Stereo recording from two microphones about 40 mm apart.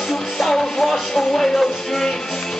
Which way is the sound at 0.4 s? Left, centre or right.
Centre.